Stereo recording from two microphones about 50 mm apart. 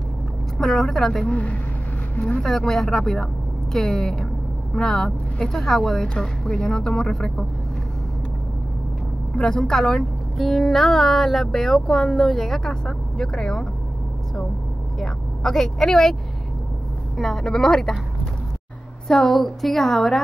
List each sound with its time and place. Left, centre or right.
0.6 s speech: centre
1.1 s speech: left
2.4 s speech: centre
5.8 s speech: left
9.4 s speech: centre
15.0 s speech: centre
17.2 s speech: centre
19.0 s speech: centre